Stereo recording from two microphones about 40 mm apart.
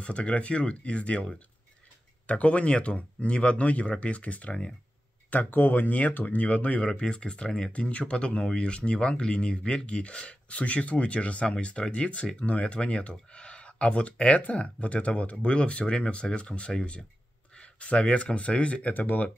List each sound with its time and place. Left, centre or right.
0.0 s speech: left
2.2 s speech: left
5.5 s speech: left
6.9 s speech: left
11.4 s speech: left
18.9 s speech: left